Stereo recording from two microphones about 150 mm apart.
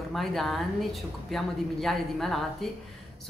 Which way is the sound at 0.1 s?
Centre (ahead or behind).